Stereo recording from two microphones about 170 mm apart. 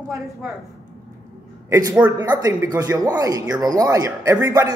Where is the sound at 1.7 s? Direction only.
20° right (ahead or behind).